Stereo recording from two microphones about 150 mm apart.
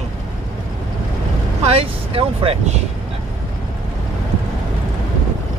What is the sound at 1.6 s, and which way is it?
Speech, 40° right (ahead or behind).